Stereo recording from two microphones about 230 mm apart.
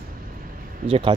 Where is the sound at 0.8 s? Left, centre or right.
Right.